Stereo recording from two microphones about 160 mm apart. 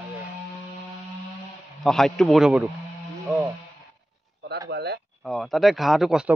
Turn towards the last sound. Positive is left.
turn(degrees=-5)  # may be behind; listen again after turning